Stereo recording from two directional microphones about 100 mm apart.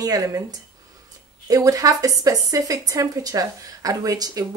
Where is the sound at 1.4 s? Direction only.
35° right (ahead or behind).